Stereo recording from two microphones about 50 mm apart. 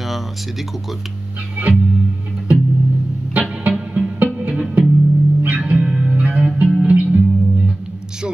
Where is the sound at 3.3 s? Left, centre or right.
Right.